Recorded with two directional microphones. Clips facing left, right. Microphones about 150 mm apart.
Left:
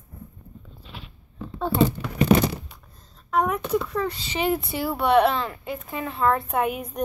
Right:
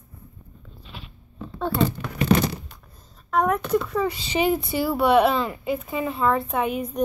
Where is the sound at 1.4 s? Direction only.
5° left (ahead or behind).